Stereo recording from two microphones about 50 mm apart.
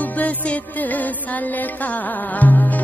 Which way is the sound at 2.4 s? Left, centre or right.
Left.